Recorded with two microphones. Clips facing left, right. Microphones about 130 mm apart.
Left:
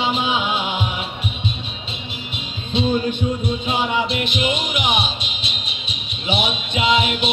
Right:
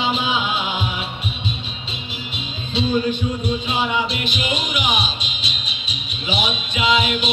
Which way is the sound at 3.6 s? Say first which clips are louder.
Left 3 dB; 60° left (ahead or behind).